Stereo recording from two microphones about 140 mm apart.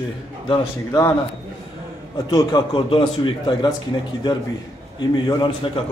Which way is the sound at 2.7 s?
35° left (ahead or behind).